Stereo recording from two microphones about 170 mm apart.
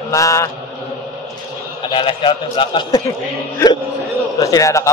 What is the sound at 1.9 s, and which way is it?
A man's voice, 30° left (ahead or behind).